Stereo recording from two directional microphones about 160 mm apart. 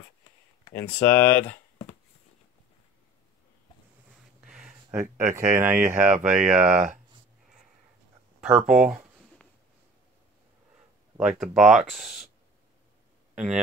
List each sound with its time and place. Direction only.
0.9 s speech: 15° left (ahead or behind)
4.4 s a sound: 5° right (ahead or behind)
4.9 s speech: 15° right (ahead or behind)
6.0 s speech: 50° right (ahead or behind)
8.6 s speech: 5° right (ahead or behind)
11.3 s speech: centre (ahead or behind)
13.3 s speech: 5° right (ahead or behind)